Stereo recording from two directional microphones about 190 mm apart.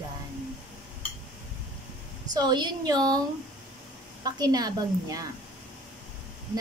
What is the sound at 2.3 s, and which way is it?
Speech, 20° right (ahead or behind).